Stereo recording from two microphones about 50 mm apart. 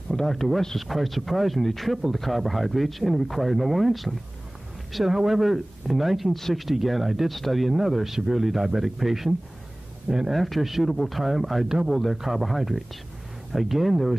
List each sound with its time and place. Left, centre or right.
0.1 s speech: centre
10.0 s speech: centre
10.3 s speech: centre